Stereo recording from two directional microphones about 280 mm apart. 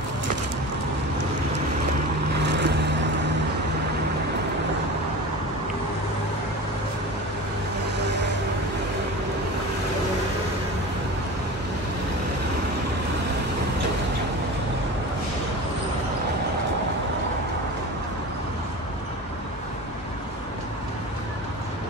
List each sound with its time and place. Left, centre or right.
2.4 s vehicle: right
8.0 s vehicle: right